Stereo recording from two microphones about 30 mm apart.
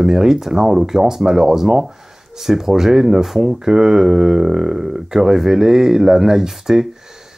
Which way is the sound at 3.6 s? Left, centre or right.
Centre.